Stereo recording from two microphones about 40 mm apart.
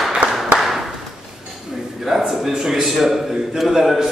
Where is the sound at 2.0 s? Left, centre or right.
Centre.